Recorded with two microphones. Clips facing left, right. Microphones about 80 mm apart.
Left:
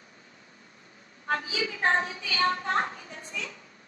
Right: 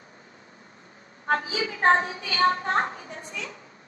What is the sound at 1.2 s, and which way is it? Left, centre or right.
A woman's voice, right.